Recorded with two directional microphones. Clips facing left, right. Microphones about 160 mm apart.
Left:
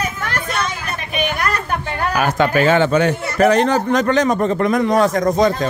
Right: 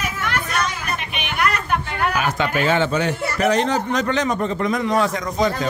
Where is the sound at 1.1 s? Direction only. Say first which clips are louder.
Left 3 dB; 40° left (ahead or behind).